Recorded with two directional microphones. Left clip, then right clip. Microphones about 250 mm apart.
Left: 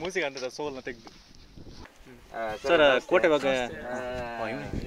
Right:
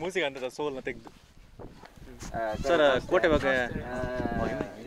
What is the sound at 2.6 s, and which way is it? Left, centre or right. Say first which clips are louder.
Speech: left 3 dB; centre.